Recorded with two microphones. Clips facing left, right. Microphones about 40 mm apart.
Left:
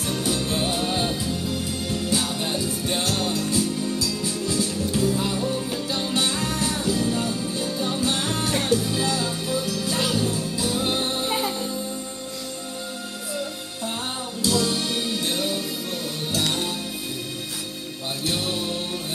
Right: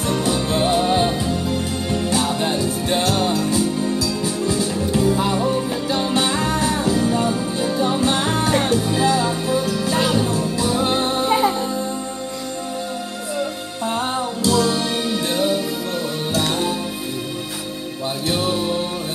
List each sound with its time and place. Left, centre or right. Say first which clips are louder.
0.0 s music: right 5 dB; centre
13.4 s music: right 8 dB; right
18.2 s music: right 5 dB; centre